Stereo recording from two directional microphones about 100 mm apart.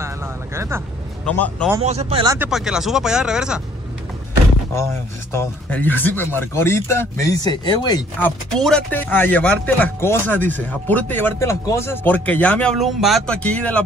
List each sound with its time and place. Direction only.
0.6 s speech: 25° right (ahead or behind)
1.2 s speech: 10° left (ahead or behind)
1.8 s speech: 90° right
2.5 s speech: 5° right (ahead or behind)
5.7 s speech: 20° left (ahead or behind)
7.6 s speech: 45° left (ahead or behind)
8.5 s speech: 5° left (ahead or behind)
8.9 s speech: 20° left (ahead or behind)
12.7 s speech: centre (ahead or behind)
13.3 s speech: 10° left (ahead or behind)